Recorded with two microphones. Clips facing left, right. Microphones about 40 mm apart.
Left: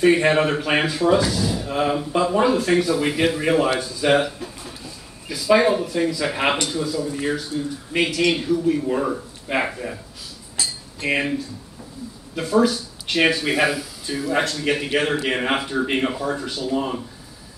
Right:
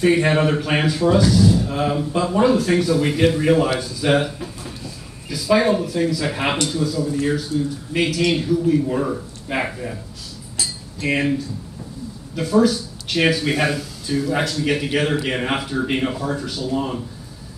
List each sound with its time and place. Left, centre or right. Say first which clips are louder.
0.0 s speech: even; centre
10.6 s cutlery: right 1 dB; centre
12.4 s speech: right 2 dB; centre